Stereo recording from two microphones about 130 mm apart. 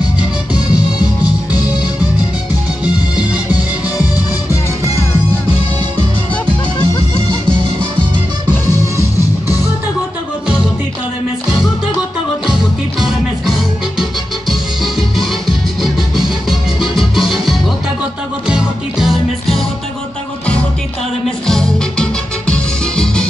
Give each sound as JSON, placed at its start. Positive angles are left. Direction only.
{"t": 1.2, "sound": "music", "side_deg": 30}
{"t": 4.0, "sound": "music", "side_deg": 25}
{"t": 13.0, "sound": "music", "side_deg": 0}
{"t": 21.5, "sound": "music", "side_deg": 5}